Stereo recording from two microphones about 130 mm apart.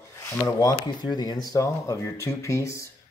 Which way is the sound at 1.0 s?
35° left (ahead or behind).